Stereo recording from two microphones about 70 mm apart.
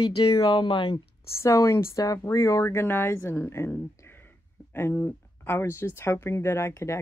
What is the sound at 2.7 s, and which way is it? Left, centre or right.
Speech, left.